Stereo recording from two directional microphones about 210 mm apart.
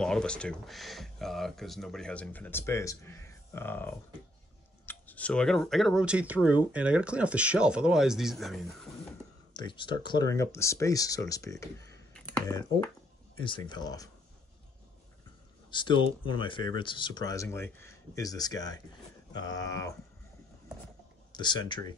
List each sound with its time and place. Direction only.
0.0 s speech: 5° left (ahead or behind)
9.5 s speech: 20° left (ahead or behind)
12.1 s computer keyboard: 5° left (ahead or behind)
12.4 s speech: 20° left (ahead or behind)
15.7 s speech: 20° left (ahead or behind)
21.3 s speech: 20° left (ahead or behind)